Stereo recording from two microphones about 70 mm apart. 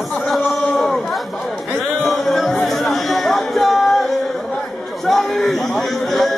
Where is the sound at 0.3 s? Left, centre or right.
Centre.